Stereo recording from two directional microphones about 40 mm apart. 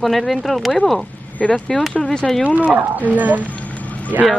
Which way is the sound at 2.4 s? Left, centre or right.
Right.